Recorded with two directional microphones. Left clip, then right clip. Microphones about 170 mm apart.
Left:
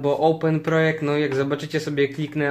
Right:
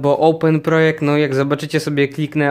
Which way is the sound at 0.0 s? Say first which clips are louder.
Right 6 dB; 60° right (ahead or behind).